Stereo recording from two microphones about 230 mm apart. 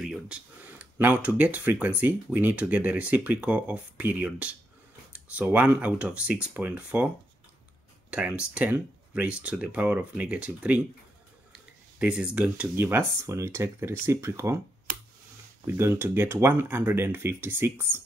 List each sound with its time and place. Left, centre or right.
0.0 s speech: centre
8.1 s speech: centre
11.5 s a sound: centre
12.4 s speech: centre
15.6 s speech: centre